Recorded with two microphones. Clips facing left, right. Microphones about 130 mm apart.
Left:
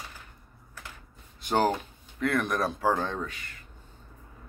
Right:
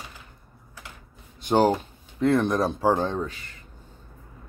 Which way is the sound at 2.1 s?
30° right (ahead or behind).